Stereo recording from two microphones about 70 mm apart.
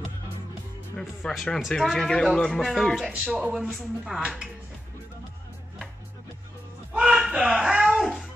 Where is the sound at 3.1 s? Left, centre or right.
Centre.